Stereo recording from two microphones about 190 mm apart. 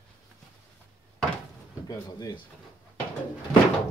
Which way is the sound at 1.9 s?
20° left (ahead or behind).